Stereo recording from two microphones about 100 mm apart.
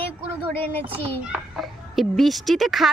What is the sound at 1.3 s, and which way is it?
Speech, centre (ahead or behind).